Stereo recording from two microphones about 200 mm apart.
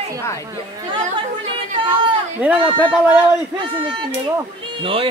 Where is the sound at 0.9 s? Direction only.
25° right (ahead or behind).